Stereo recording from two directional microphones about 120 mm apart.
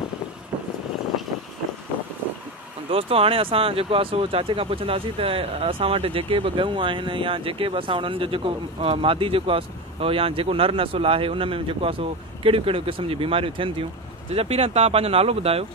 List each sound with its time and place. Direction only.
2.9 s speech: 55° right (ahead or behind)